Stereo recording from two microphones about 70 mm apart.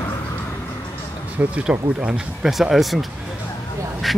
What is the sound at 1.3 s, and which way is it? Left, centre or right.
Speech, right.